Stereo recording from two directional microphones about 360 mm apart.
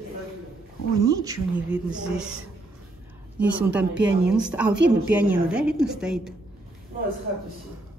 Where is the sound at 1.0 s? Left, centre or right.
Centre.